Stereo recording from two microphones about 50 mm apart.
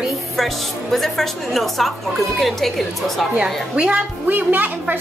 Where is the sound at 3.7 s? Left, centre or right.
Right.